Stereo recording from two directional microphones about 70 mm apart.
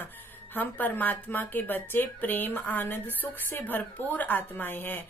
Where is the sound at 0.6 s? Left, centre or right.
Left.